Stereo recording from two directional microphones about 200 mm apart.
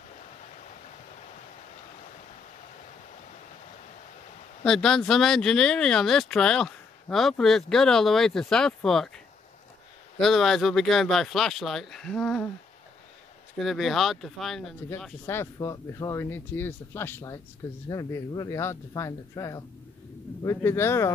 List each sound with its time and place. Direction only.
4.6 s speech: centre (ahead or behind)
13.6 s speech: centre (ahead or behind)